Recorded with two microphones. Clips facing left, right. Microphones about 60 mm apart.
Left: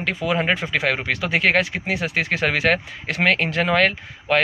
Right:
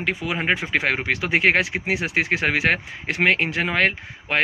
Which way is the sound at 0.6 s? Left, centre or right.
Right.